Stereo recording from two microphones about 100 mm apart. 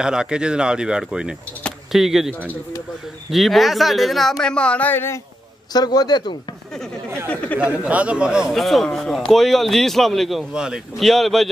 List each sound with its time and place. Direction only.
0.0 s a man's voice: 5° right (ahead or behind); by 5.2 s 25° left (ahead or behind)
5.7 s a man's voice: 40° left (ahead or behind)
7.8 s a man's voice: 10° right (ahead or behind)